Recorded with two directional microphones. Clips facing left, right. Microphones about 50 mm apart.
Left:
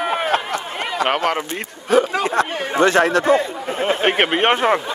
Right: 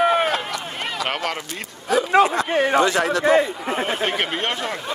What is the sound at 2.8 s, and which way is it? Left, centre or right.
Speech, left.